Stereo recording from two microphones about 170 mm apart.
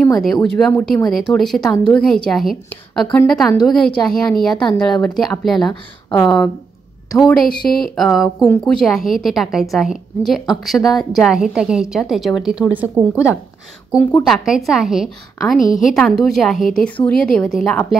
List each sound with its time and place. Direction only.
0.0 s a woman's voice: centre (ahead or behind)
5.7 s speech: 20° left (ahead or behind)
7.2 s a woman's voice: 5° left (ahead or behind)